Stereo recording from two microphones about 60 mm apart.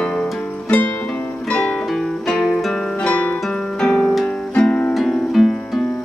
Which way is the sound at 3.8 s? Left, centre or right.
Centre.